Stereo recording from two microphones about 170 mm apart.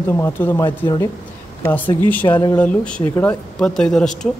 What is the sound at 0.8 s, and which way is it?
Speech, 25° left (ahead or behind).